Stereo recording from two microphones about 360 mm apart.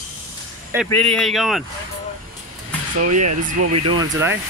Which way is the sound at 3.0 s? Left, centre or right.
Right.